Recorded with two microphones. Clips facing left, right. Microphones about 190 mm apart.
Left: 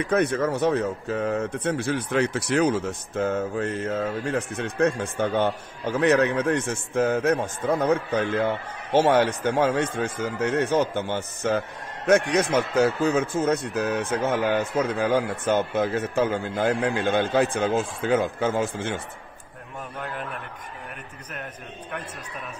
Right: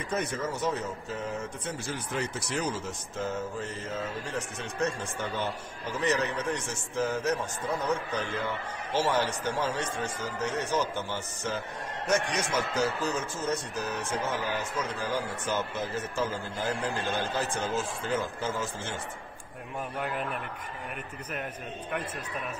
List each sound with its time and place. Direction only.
0.1 s speech: 60° left (ahead or behind)